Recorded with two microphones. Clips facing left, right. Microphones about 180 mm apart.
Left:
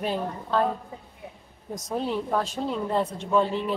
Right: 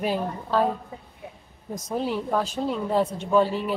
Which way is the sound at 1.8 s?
Centre (ahead or behind).